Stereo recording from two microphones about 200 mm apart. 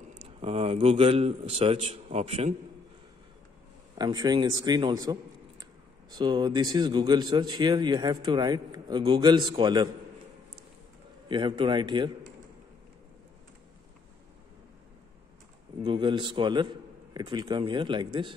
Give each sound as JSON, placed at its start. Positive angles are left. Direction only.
{"t": 0.4, "sound": "a man's voice", "side_deg": -30}
{"t": 4.0, "sound": "a man's voice", "side_deg": -20}
{"t": 11.2, "sound": "a man's voice", "side_deg": -25}
{"t": 15.8, "sound": "a man's voice", "side_deg": -25}